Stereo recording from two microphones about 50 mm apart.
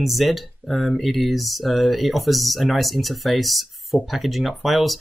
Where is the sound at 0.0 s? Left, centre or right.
Centre.